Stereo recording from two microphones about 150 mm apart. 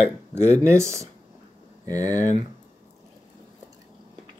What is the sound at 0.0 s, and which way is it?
Speech, 15° right (ahead or behind).